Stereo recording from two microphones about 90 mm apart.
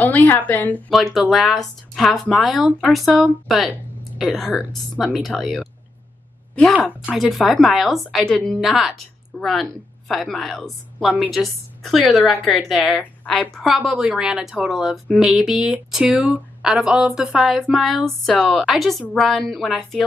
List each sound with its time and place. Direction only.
0.0 s speech: 20° left (ahead or behind)
0.8 s speech: centre (ahead or behind)
6.5 s a woman's voice: 15° left (ahead or behind)
6.8 s a woman's voice: 5° right (ahead or behind)
13.0 s a sound: 20° left (ahead or behind)
13.4 s speech: centre (ahead or behind)